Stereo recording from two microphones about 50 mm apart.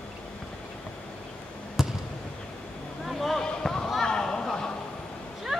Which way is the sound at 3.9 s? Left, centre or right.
Centre.